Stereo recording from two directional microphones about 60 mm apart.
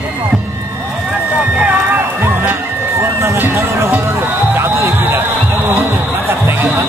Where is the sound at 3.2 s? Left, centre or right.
Right.